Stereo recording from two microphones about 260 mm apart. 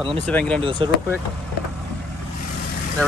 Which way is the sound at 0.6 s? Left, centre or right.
Centre.